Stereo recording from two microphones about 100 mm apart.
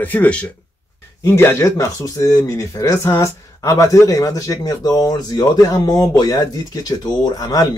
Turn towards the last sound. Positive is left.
turn(degrees=40)  # may be behind; listen again after turning